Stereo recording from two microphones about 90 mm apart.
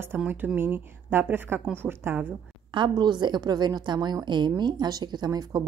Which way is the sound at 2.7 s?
60° right (ahead or behind).